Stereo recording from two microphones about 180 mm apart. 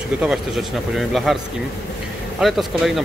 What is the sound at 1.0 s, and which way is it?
Speech, centre (ahead or behind).